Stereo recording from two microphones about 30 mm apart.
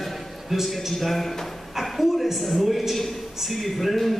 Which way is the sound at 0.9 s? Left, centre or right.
Centre.